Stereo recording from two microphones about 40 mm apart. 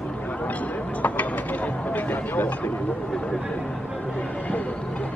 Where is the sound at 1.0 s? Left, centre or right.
Left.